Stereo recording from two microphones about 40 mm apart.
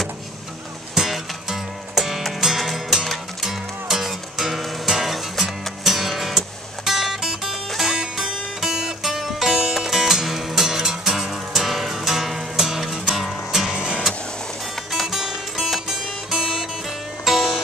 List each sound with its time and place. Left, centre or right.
0.9 s music: centre
13.7 s music: right
15.0 s music: centre